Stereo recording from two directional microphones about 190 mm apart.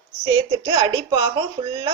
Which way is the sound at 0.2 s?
20° right (ahead or behind).